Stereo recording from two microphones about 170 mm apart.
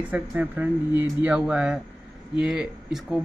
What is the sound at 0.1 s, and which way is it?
Speech, 10° right (ahead or behind).